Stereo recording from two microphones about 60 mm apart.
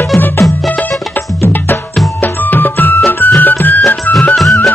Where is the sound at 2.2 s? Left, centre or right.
Left.